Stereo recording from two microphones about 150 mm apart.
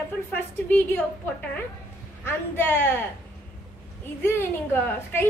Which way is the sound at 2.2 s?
15° left (ahead or behind).